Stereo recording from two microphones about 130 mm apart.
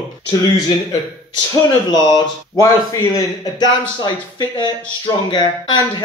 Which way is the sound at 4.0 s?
35° left (ahead or behind).